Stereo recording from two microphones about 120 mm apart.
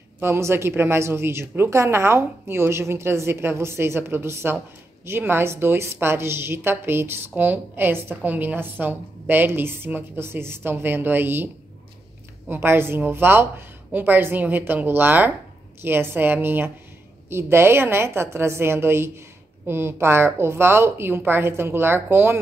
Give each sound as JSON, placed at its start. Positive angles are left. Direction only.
{"t": 0.2, "sound": "a woman's voice", "side_deg": -20}
{"t": 12.4, "sound": "a woman's voice", "side_deg": -20}